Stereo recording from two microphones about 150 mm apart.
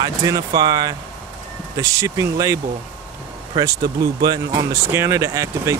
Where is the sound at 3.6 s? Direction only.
25° right (ahead or behind).